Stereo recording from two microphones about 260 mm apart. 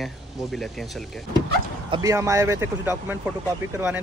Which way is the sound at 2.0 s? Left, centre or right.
Centre.